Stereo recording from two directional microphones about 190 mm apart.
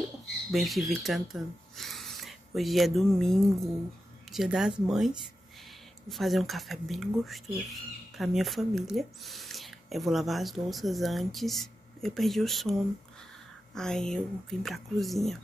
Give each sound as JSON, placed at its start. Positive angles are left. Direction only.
{"t": 0.5, "sound": "speech", "side_deg": 0}
{"t": 13.7, "sound": "speech", "side_deg": 5}